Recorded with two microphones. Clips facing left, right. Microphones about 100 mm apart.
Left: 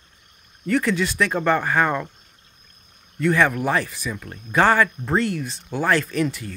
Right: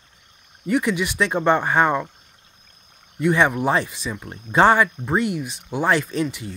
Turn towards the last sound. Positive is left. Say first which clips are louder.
# left 1 dB
turn(degrees=-20)  # may be behind; listen again after turning